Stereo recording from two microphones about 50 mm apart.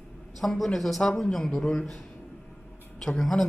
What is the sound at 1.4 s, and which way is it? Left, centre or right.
Speech, centre.